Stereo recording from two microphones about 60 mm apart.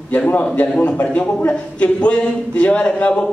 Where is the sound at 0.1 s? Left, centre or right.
Left.